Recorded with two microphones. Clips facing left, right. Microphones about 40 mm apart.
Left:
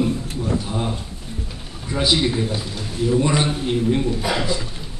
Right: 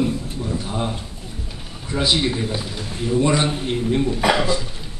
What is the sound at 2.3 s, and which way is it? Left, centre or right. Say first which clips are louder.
A man's voice: left 1 dB; centre.